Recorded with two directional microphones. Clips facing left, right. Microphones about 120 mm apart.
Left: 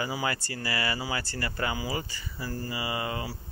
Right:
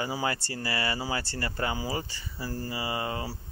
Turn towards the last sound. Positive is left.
turn(degrees=-30)  # may be behind; listen again after turning